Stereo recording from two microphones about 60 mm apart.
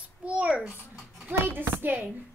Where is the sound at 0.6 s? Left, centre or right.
Right.